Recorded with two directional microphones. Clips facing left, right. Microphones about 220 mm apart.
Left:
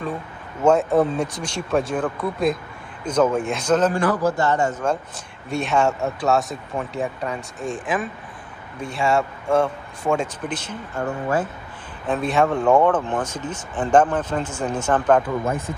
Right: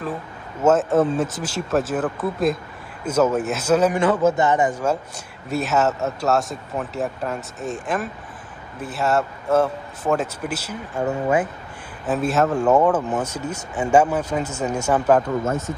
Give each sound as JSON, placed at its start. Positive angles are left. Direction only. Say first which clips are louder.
{"t": 0.6, "sound": "speech", "louder": "even", "side_deg": -5}
{"t": 3.9, "sound": "a man's voice", "louder": "right 2 dB", "side_deg": -25}
{"t": 5.5, "sound": "speech", "louder": "even", "side_deg": -5}
{"t": 11.1, "sound": "a man's voice", "louder": "right 3 dB", "side_deg": -20}
{"t": 12.1, "sound": "speech", "louder": "even", "side_deg": 0}